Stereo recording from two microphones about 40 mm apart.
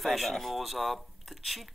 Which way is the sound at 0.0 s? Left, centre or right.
Centre.